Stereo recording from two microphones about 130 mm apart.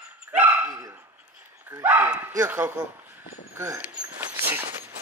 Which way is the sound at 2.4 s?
10° right (ahead or behind).